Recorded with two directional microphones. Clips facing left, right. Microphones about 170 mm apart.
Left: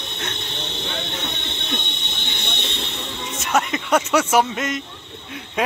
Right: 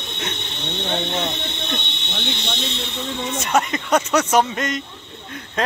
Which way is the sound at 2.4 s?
55° left (ahead or behind).